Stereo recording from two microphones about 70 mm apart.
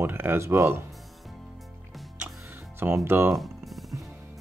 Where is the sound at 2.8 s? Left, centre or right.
Right.